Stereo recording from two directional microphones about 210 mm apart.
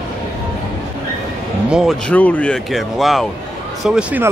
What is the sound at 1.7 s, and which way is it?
Speech, centre (ahead or behind).